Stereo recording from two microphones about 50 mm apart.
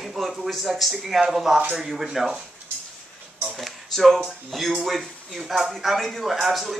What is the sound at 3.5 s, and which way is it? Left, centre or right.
Speech, centre.